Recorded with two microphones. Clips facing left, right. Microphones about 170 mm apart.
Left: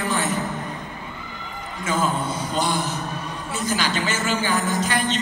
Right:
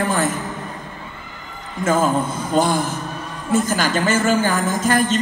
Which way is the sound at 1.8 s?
50° right (ahead or behind).